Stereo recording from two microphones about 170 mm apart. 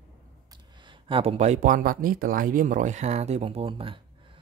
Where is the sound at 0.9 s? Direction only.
30° right (ahead or behind).